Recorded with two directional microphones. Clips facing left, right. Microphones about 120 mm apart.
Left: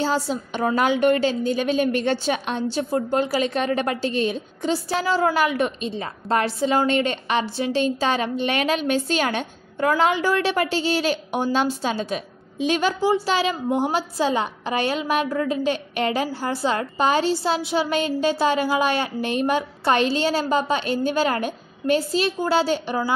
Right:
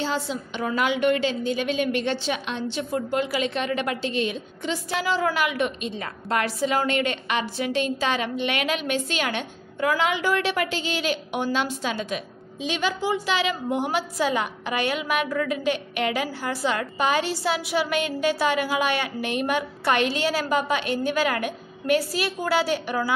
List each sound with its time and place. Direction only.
0.0 s a woman's voice: 40° left (ahead or behind)
12.5 s a woman's voice: 45° left (ahead or behind); by 23.1 s 30° left (ahead or behind)